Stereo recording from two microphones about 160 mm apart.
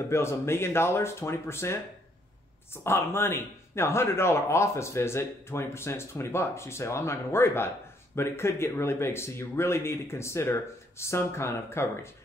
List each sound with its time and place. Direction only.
0.1 s speech: 15° left (ahead or behind)